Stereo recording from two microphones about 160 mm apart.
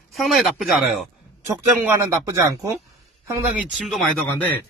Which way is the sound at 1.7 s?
10° right (ahead or behind).